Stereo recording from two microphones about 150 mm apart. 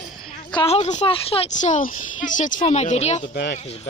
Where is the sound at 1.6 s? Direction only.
60° left (ahead or behind).